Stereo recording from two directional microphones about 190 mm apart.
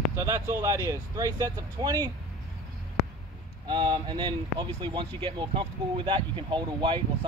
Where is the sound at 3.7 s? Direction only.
25° right (ahead or behind).